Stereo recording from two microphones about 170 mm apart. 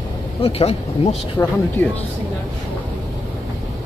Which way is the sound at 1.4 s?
15° left (ahead or behind).